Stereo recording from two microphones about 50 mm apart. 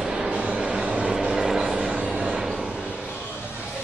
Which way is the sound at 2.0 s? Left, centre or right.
Centre.